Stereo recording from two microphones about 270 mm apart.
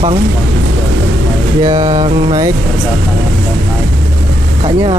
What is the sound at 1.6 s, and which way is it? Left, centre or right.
Speech, centre.